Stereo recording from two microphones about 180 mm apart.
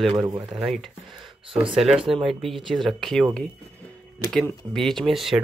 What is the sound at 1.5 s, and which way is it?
Speech, 30° right (ahead or behind).